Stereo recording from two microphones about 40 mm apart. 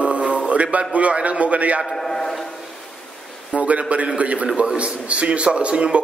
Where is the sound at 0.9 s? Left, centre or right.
Right.